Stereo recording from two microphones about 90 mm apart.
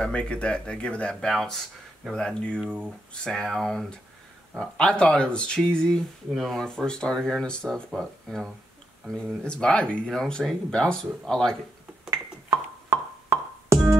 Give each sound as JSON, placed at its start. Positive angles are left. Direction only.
{"t": 0.0, "sound": "speech", "side_deg": 10}
{"t": 1.3, "sound": "speech", "side_deg": 0}
{"t": 2.6, "sound": "speech", "side_deg": -15}
{"t": 3.2, "sound": "speech", "side_deg": 5}
{"t": 9.4, "sound": "speech", "side_deg": 10}
{"t": 12.1, "sound": "music", "side_deg": -35}